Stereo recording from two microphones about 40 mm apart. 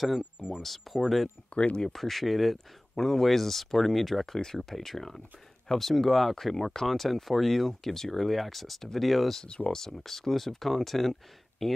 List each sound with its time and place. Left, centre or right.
0.6 s speech: centre
1.5 s speech: left
1.9 s speech: centre
9.7 s speech: centre